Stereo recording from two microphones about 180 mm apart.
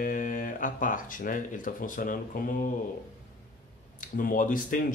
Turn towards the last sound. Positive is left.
turn(degrees=45)  # may be behind; listen again after turning